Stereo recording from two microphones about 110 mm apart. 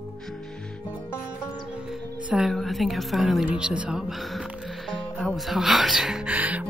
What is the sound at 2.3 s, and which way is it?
A woman's voice, centre (ahead or behind).